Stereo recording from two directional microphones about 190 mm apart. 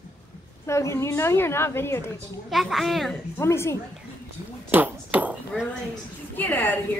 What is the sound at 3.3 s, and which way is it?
Speech, 15° left (ahead or behind).